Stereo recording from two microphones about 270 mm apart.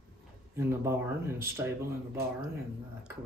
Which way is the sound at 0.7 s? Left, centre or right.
Centre.